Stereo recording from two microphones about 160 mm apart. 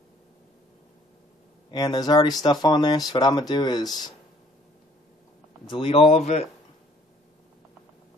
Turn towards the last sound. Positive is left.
turn(degrees=45)  # may be behind; listen again after turning